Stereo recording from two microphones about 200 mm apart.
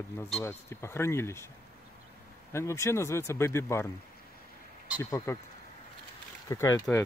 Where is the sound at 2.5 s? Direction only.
15° left (ahead or behind).